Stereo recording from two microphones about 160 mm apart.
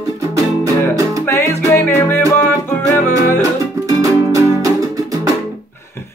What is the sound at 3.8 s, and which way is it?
Music, 20° right (ahead or behind).